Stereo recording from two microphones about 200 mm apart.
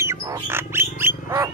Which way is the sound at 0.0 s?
15° right (ahead or behind).